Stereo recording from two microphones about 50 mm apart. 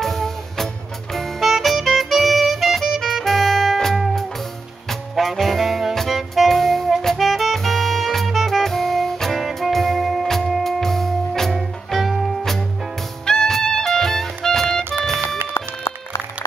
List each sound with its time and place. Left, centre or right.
0.0 s music: centre
5.1 s saxophone: centre
7.2 s music: centre
15.5 s run: left